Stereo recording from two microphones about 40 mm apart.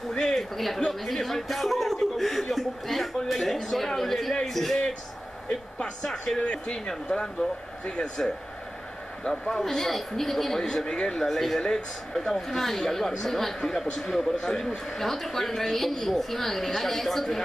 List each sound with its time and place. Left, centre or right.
0.1 s a sound: centre
0.7 s chuckle: centre
3.3 s a man's voice: centre
6.0 s a man's voice: centre
6.4 s speech: left
6.9 s a man's voice: centre
9.2 s a man's voice: centre
10.6 s speech: centre
11.1 s a man's voice: centre